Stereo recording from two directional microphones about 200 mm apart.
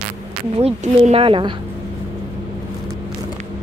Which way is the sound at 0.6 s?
30° right (ahead or behind).